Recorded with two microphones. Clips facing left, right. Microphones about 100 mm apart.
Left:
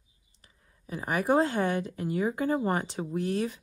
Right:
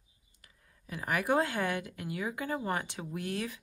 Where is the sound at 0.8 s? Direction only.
30° left (ahead or behind).